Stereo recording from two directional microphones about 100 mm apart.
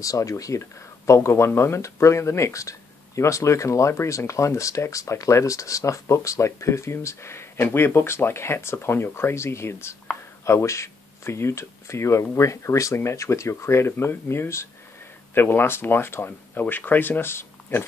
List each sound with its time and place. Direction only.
0.0 s speech: 35° left (ahead or behind)